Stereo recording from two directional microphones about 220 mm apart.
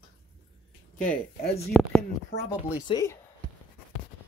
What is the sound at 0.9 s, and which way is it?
Speech, 35° left (ahead or behind).